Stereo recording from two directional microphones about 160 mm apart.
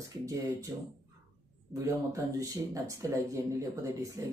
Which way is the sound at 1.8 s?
20° right (ahead or behind).